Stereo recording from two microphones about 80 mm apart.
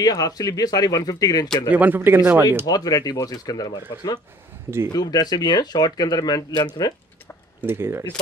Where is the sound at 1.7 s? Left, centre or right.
Right.